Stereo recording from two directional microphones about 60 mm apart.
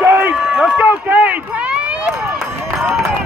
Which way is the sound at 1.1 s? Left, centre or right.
Right.